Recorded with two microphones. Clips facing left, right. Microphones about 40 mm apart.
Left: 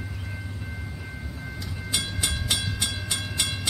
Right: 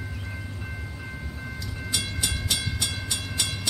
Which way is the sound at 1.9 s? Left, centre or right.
Centre.